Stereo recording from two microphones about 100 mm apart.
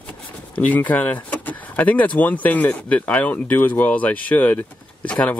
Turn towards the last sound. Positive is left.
turn(degrees=10)  # may be behind; listen again after turning